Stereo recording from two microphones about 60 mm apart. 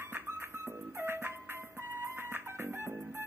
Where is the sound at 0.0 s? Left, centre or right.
Right.